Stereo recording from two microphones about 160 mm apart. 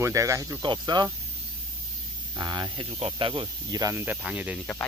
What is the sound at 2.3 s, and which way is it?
Speech, 25° right (ahead or behind).